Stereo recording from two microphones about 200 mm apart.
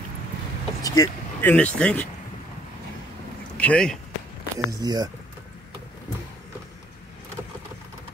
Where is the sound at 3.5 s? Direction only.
5° left (ahead or behind).